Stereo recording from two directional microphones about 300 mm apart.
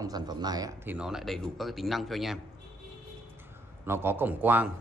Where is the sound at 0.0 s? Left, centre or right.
Centre.